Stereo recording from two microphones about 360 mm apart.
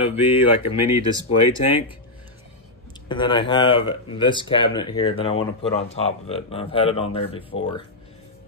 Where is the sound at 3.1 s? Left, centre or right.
Centre.